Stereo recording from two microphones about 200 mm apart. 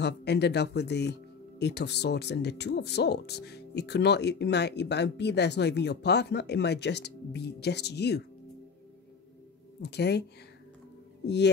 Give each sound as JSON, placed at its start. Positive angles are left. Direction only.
{"t": 0.0, "sound": "speech", "side_deg": 55}
{"t": 9.8, "sound": "speech", "side_deg": 55}
{"t": 11.2, "sound": "speech", "side_deg": 60}